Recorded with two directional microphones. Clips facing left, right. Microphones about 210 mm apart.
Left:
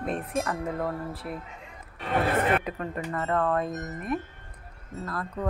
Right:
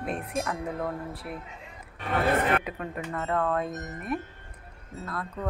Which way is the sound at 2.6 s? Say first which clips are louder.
Left 2 dB; 5° right (ahead or behind).